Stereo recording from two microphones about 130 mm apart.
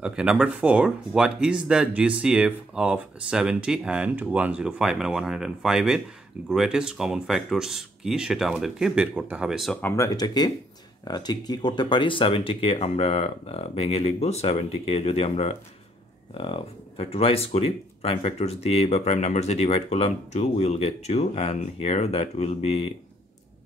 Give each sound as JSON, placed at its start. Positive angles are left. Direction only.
{"t": 0.0, "sound": "speech", "side_deg": -5}
{"t": 9.8, "sound": "speech", "side_deg": 20}